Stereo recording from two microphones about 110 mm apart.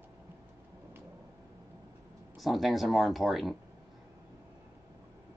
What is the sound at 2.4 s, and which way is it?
Speech, centre (ahead or behind).